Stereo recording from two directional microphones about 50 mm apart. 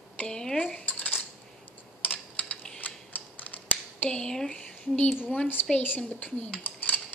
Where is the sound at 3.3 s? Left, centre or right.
Left.